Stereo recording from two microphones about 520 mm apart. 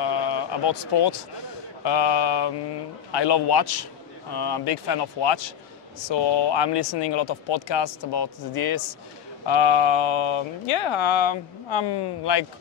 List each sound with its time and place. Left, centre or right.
0.0 s speech: left
9.5 s speech: left